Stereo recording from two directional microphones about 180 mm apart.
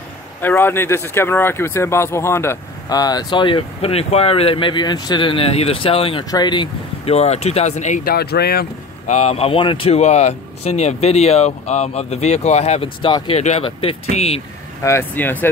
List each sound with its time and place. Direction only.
0.4 s speech: 10° left (ahead or behind); by 8.6 s 60° left (ahead or behind)
9.0 s speech: 35° left (ahead or behind)
14.8 s speech: 15° left (ahead or behind)